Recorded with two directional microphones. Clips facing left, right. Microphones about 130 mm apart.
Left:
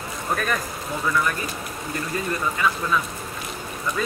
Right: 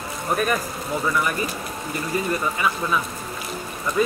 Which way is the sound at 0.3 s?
15° right (ahead or behind).